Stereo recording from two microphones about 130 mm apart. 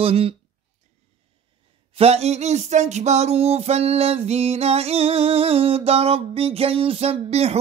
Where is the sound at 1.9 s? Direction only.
50° right (ahead or behind).